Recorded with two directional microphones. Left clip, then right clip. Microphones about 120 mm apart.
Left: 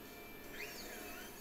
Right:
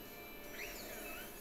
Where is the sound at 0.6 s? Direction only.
40° right (ahead or behind).